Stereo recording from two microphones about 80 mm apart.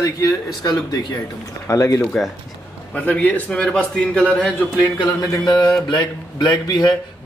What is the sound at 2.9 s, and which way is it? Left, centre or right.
A man's voice, centre.